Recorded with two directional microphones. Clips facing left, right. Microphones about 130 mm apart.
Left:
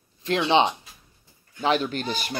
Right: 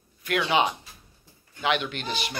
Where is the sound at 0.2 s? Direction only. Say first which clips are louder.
Left 3 dB; 25° left (ahead or behind).